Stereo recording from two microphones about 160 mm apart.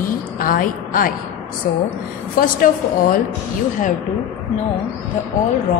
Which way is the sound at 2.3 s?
60° left (ahead or behind).